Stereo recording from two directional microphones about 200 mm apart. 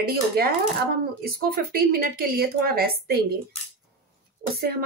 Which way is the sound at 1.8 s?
50° right (ahead or behind).